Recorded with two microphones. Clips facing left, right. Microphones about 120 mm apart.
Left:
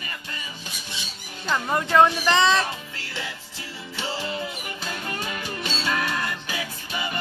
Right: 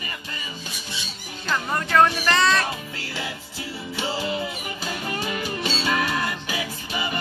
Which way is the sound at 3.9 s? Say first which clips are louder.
Right 3 dB; 10° right (ahead or behind).